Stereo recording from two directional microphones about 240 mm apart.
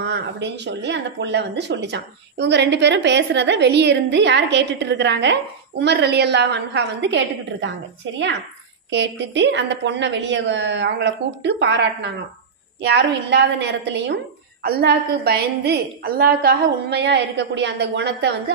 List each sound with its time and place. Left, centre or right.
0.0 s speech: right